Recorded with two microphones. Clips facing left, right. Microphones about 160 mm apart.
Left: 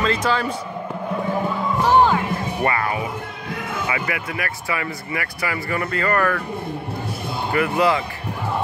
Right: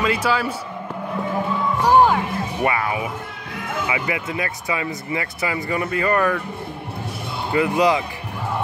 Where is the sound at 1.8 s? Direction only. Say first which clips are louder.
Right 1 dB; 10° right (ahead or behind).